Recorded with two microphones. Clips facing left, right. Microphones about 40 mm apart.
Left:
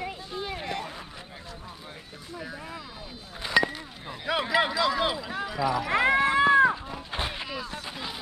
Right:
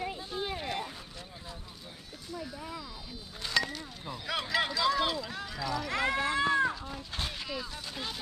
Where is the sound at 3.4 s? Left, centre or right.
Centre.